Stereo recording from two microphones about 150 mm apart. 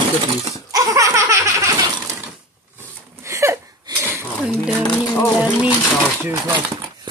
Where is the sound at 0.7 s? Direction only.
25° right (ahead or behind).